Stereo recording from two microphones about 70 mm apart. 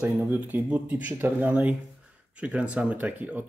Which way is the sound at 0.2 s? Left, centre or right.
Right.